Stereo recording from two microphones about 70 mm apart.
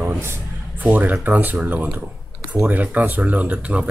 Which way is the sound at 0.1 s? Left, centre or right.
Right.